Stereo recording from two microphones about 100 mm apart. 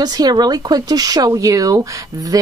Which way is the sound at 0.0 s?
40° right (ahead or behind).